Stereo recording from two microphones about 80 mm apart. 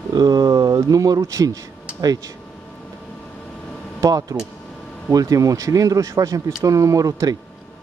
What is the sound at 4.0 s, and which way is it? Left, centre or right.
Speech, right.